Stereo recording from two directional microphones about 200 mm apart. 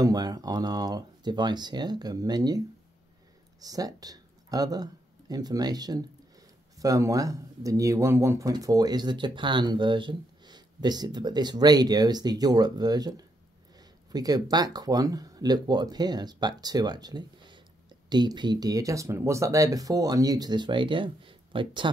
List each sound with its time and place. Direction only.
0.0 s speech: 20° right (ahead or behind)
3.6 s speech: 20° right (ahead or behind)
14.1 s speech: 20° right (ahead or behind)